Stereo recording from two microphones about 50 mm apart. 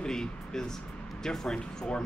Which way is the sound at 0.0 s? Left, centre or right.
Centre.